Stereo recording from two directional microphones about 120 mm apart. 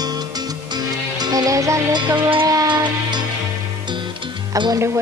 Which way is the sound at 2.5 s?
35° right (ahead or behind).